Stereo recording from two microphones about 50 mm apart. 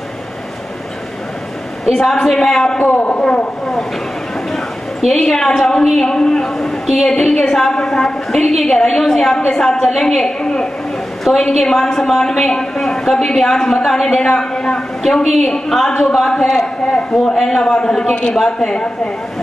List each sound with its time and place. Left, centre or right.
1.9 s a woman's voice: centre
2.8 s a man's voice: left
5.0 s a woman's voice: centre
11.3 s a woman's voice: centre
11.6 s a woman's voice: centre
16.0 s a woman's voice: centre